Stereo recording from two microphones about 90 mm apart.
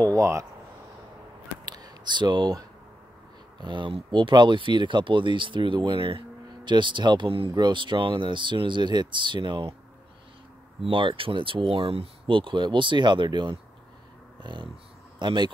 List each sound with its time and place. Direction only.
0.0 s speech: 35° right (ahead or behind)
1.7 s a sound: 50° right (ahead or behind)
3.6 s speech: 65° right (ahead or behind)
7.5 s speech: 60° right (ahead or behind)
10.9 s speech: 70° right (ahead or behind)